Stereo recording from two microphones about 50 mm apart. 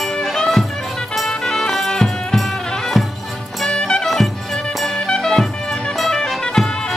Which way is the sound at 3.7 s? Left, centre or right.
Centre.